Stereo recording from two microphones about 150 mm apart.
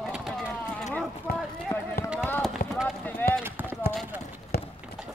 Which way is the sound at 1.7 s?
30° left (ahead or behind).